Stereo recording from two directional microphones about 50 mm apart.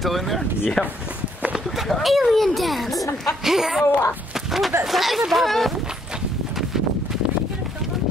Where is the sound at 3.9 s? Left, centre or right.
Left.